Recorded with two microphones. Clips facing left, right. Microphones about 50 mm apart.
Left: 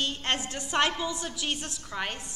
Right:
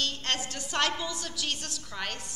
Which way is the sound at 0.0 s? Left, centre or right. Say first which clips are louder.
Left 2 dB; left.